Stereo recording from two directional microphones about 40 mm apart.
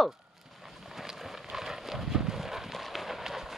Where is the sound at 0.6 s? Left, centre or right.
Centre.